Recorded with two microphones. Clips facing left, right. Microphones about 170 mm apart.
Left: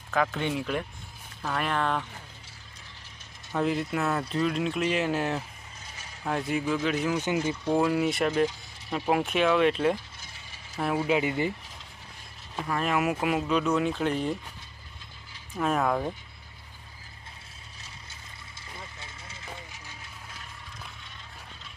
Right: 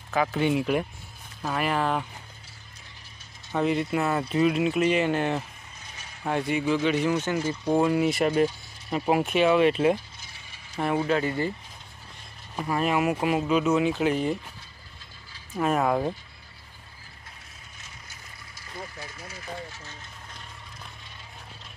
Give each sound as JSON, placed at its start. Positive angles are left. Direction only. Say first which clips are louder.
{"t": 0.1, "sound": "speech", "louder": "right 3 dB", "side_deg": -5}
{"t": 3.5, "sound": "speech", "louder": "right 3 dB", "side_deg": 0}
{"t": 7.2, "sound": "speech", "louder": "right 1 dB", "side_deg": 15}
{"t": 7.7, "sound": "speech", "louder": "right 3 dB", "side_deg": 0}
{"t": 11.1, "sound": "speech", "louder": "even", "side_deg": 15}
{"t": 12.5, "sound": "speech", "louder": "right 3 dB", "side_deg": -5}
{"t": 15.5, "sound": "speech", "louder": "right 2 dB", "side_deg": -5}
{"t": 18.9, "sound": "vehicle", "louder": "right 5 dB", "side_deg": 25}